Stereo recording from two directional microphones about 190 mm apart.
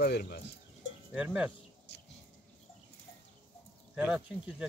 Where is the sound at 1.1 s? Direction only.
5° right (ahead or behind).